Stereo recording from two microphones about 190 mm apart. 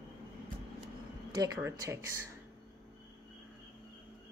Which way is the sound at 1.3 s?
20° right (ahead or behind).